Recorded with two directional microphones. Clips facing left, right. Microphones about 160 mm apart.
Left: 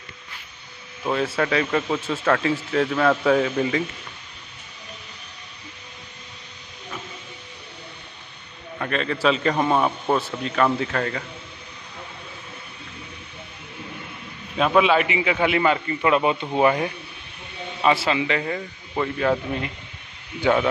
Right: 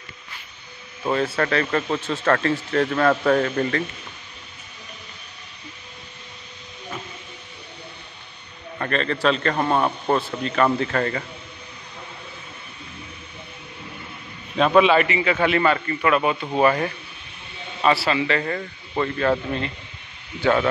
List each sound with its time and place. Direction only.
1.0 s speech: 5° left (ahead or behind)
8.7 s speech: 5° left (ahead or behind)
14.6 s speech: 5° left (ahead or behind)